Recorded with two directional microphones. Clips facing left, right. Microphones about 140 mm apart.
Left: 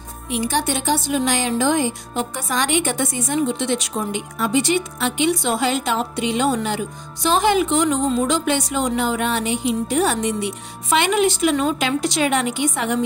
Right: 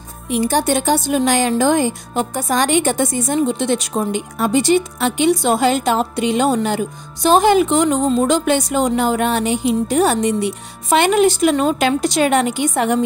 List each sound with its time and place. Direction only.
0.3 s speech: 45° right (ahead or behind)